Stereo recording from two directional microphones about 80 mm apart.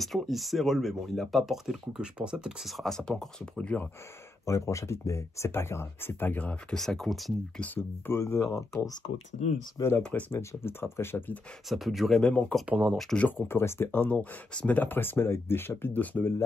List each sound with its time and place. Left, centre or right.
0.0 s speech: centre
2.8 s speech: centre
4.5 s speech: left; by 6.8 s centre
6.8 s speech: centre
7.5 s speech: centre
8.2 s speech: left
9.8 s speech: left
11.7 s speech: centre
12.2 s speech: centre
12.6 s speech: centre
12.9 s speech: centre
13.4 s speech: left
14.1 s speech: centre